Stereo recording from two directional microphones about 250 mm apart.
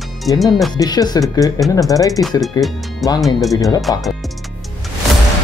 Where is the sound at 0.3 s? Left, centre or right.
Centre.